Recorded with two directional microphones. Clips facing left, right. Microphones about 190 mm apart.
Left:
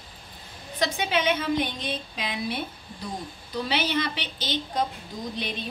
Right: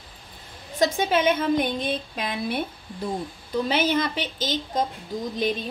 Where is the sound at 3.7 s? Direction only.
45° right (ahead or behind).